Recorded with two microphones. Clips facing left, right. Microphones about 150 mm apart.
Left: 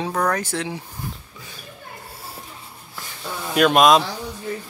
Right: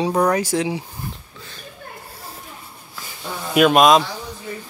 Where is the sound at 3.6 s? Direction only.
Centre (ahead or behind).